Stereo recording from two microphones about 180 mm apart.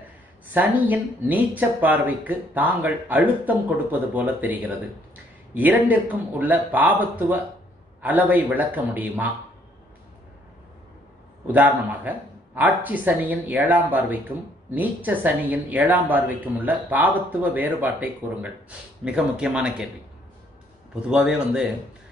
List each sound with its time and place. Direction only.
0.5 s speech: 10° right (ahead or behind)
11.4 s speech: 10° right (ahead or behind)
20.9 s a man's voice: 5° right (ahead or behind)